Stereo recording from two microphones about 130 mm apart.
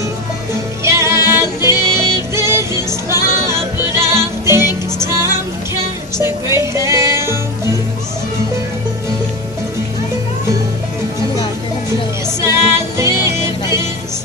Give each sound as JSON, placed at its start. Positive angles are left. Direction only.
{"t": 0.8, "sound": "music", "side_deg": -20}
{"t": 12.4, "sound": "music", "side_deg": -20}